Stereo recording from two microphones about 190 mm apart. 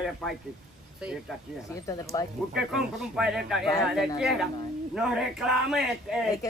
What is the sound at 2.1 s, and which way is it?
Speech, 20° left (ahead or behind).